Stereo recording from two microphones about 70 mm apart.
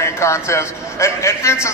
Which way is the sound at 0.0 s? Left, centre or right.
Left.